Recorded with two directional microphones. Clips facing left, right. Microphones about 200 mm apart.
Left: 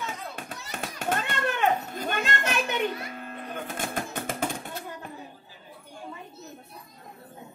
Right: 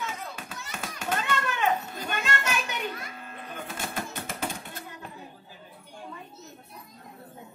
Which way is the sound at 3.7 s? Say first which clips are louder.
Left 2 dB; 50° left (ahead or behind).